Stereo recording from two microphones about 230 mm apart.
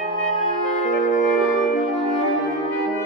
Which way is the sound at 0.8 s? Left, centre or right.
Left.